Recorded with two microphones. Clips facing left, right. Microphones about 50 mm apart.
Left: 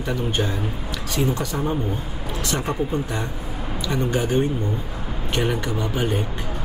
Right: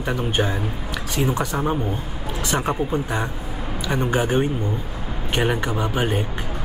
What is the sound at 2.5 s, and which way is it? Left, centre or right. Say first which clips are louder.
Speech: right 2 dB; centre.